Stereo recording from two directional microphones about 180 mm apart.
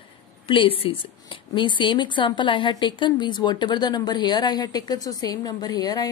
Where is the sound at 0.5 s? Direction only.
30° left (ahead or behind).